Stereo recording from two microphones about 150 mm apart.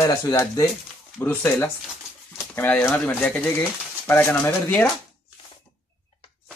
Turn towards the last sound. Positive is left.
turn(degrees=10)  # may be behind; listen again after turning